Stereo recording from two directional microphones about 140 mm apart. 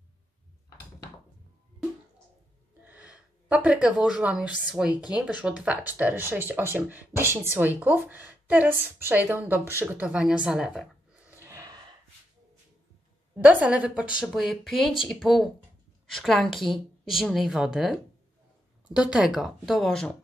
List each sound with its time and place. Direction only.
2.8 s a woman's voice: 10° right (ahead or behind)
11.2 s a sound: 20° right (ahead or behind)
13.4 s speech: 10° right (ahead or behind)